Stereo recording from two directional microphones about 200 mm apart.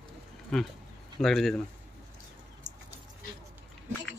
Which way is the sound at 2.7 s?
35° right (ahead or behind).